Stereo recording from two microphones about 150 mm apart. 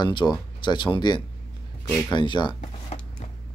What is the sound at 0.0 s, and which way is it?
Speech, 30° left (ahead or behind).